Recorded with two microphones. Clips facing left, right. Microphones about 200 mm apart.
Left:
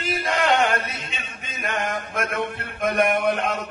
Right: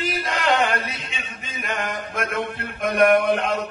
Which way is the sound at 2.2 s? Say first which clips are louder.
Right 1 dB; 60° right (ahead or behind).